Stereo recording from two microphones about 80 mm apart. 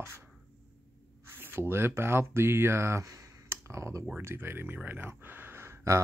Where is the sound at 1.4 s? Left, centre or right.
Right.